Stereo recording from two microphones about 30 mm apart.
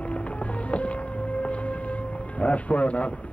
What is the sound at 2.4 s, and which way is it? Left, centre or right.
Speech, left.